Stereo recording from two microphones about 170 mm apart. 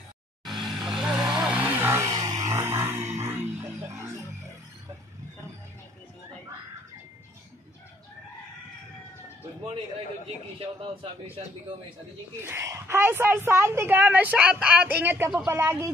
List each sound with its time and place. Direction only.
0.7 s vehicle: centre (ahead or behind)
10.2 s a man's voice: 35° right (ahead or behind)
12.4 s a woman's voice: 15° right (ahead or behind)